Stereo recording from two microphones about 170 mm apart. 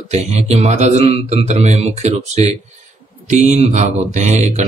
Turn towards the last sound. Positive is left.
turn(degrees=-45)  # may be behind; listen again after turning